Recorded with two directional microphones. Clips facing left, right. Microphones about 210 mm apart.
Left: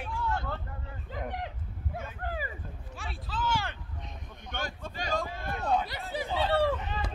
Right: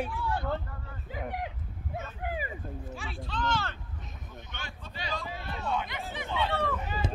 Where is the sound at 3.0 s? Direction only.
Centre (ahead or behind).